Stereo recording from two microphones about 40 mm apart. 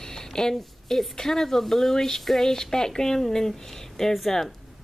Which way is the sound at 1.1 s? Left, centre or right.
Centre.